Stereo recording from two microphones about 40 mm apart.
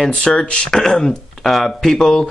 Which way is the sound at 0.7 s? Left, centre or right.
Centre.